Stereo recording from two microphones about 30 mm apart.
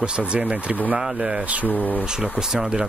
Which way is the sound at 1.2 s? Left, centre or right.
Right.